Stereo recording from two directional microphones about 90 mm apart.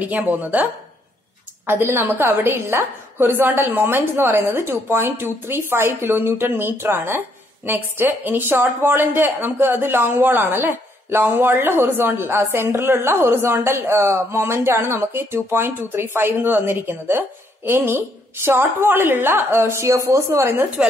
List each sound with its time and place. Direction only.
0.0 s a woman's voice: 15° right (ahead or behind)
1.7 s a woman's voice: 25° right (ahead or behind)